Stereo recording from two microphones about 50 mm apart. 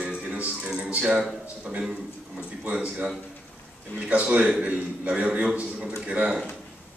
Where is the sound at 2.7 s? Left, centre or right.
Right.